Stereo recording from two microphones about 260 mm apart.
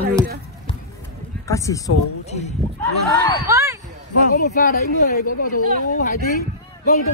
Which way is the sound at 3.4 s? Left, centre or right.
Centre.